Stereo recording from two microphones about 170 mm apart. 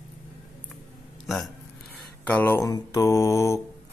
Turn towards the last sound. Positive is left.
turn(degrees=15)  # may be behind; listen again after turning